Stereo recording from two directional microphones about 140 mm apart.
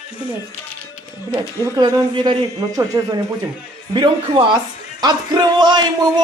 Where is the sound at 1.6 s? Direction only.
25° right (ahead or behind).